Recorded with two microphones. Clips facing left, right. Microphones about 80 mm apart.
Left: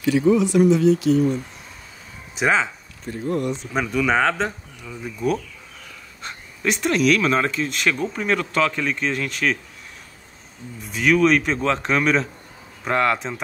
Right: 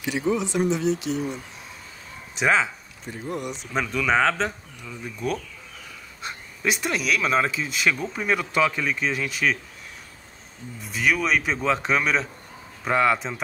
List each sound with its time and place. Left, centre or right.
0.3 s speech: right
2.3 s speech: centre
3.1 s speech: centre
3.7 s speech: centre
10.8 s speech: centre